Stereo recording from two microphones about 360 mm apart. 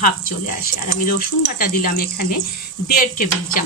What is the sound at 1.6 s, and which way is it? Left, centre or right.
Speech, left.